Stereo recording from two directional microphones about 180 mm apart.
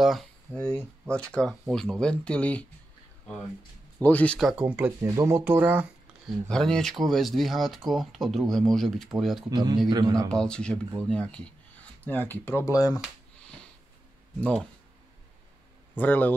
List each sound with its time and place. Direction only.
0.0 s speech: centre (ahead or behind)
4.0 s speech: 10° left (ahead or behind); by 5.9 s 10° right (ahead or behind)
6.5 s speech: 5° left (ahead or behind)
9.5 s a man's voice: 25° right (ahead or behind)
10.3 s speech: 5° left (ahead or behind)
14.4 s speech: 5° left (ahead or behind)
16.0 s speech: 10° left (ahead or behind)